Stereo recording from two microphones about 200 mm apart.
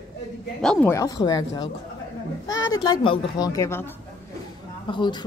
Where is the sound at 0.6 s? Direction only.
5° left (ahead or behind).